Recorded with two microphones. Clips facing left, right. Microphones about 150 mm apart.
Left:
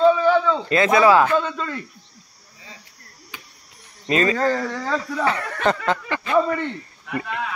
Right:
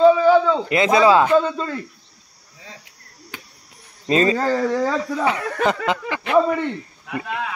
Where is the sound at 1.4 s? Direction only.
25° right (ahead or behind).